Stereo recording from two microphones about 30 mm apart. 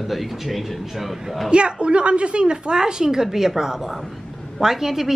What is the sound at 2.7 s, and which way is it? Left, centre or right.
Speech, right.